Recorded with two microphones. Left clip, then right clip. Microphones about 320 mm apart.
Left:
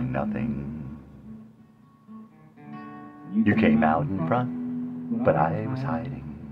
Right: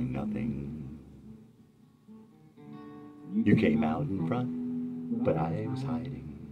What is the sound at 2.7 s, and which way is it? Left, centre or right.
Music, left.